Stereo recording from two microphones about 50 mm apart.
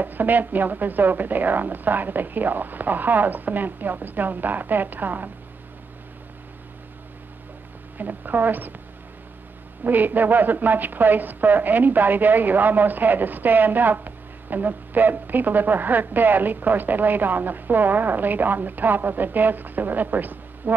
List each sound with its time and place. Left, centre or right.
0.0 s a woman's voice: right
8.0 s a woman's voice: right
9.8 s a woman's voice: right